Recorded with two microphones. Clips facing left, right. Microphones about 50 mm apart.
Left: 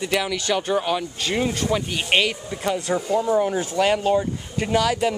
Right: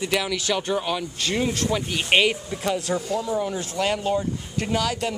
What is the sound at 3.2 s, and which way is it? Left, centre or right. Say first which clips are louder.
Speech: left 5 dB; left.